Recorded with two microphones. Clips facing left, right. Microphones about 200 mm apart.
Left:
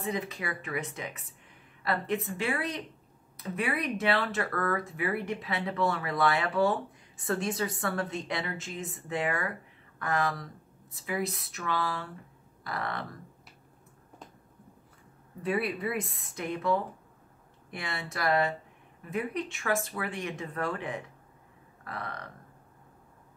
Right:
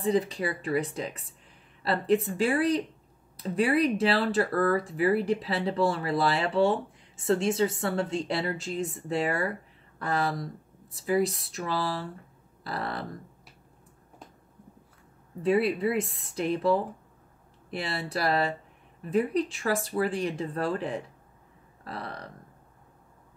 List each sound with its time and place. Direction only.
0.0 s speech: 30° right (ahead or behind)
15.4 s speech: 25° right (ahead or behind)